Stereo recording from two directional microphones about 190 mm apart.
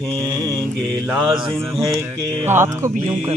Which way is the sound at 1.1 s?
Centre (ahead or behind).